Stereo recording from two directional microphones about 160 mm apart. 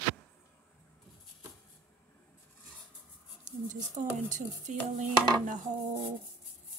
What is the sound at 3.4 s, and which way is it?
Speech, 50° right (ahead or behind).